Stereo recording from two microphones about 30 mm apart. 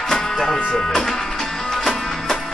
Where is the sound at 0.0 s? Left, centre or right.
Centre.